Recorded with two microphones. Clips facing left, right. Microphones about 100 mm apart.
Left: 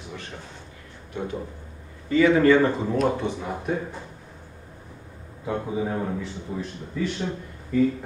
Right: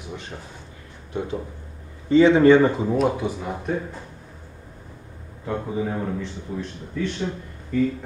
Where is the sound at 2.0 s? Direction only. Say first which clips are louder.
Right 4 dB; 25° right (ahead or behind); by 3.7 s centre (ahead or behind).